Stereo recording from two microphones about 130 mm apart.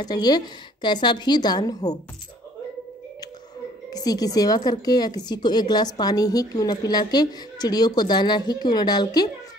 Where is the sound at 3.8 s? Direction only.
30° left (ahead or behind).